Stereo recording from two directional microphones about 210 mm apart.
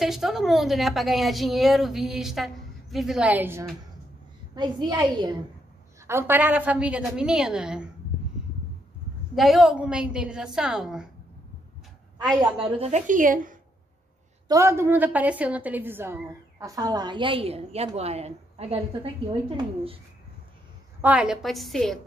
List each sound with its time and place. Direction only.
0.0 s a woman's voice: centre (ahead or behind)
4.6 s a woman's voice: 20° right (ahead or behind); by 7.9 s 5° right (ahead or behind)
9.3 s a woman's voice: centre (ahead or behind)
12.6 s a woman's voice: 30° right (ahead or behind)
14.5 s a woman's voice: 15° right (ahead or behind)
21.0 s a woman's voice: 5° right (ahead or behind)